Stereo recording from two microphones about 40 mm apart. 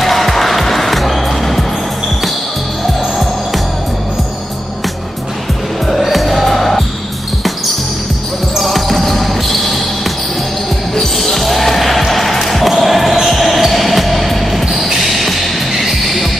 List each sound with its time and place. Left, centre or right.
0.0 s music: centre
5.9 s music: centre
8.5 s basketball bounce: centre